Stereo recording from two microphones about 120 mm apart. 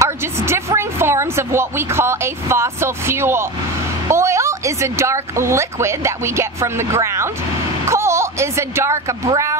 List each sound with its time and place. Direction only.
0.0 s a woman's voice: 20° right (ahead or behind)